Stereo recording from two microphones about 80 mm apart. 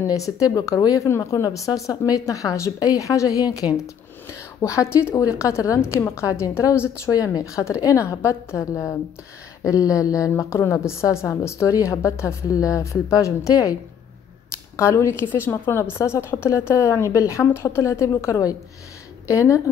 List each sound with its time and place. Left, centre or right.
0.0 s speech: left
3.7 s a woman's voice: left
7.1 s a woman's voice: left
14.8 s a woman's voice: left